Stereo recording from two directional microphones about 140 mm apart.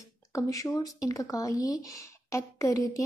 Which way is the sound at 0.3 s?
25° left (ahead or behind).